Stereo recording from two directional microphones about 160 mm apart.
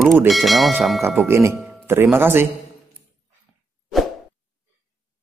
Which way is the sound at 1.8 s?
15° right (ahead or behind).